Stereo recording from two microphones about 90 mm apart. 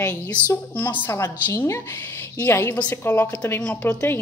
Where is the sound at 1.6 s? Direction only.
25° left (ahead or behind).